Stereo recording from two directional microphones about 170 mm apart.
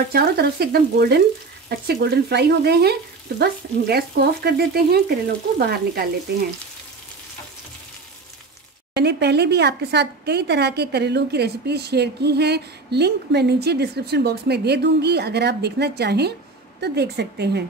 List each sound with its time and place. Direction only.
0.1 s speech: 70° right (ahead or behind)
5.6 s frying: 65° right (ahead or behind)
8.9 s speech: 80° right